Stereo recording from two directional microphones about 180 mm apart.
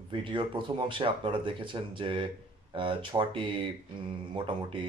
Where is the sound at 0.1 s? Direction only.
30° right (ahead or behind).